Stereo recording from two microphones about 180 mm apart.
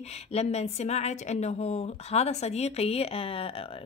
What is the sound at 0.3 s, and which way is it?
A woman's voice, 35° left (ahead or behind).